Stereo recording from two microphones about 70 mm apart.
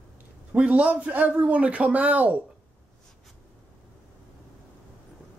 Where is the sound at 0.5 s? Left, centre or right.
Centre.